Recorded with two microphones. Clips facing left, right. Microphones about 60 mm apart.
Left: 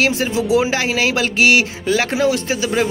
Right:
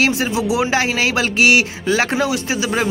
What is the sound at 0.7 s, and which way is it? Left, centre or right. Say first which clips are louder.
Speech: right 1 dB; right.